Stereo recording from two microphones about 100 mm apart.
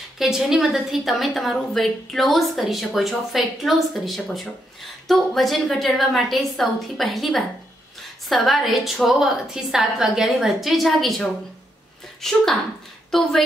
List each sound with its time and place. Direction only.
0.2 s a woman's voice: 5° right (ahead or behind)